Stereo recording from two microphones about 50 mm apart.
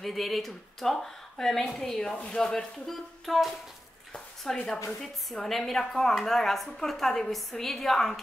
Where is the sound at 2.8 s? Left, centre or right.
Centre.